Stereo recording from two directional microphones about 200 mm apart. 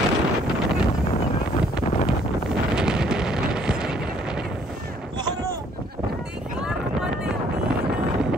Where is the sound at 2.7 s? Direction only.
5° right (ahead or behind).